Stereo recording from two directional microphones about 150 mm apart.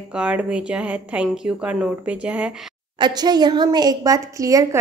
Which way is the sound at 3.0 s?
30° right (ahead or behind).